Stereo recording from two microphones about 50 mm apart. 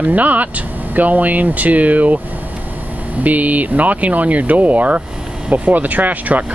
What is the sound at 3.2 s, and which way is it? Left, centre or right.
Speech, right.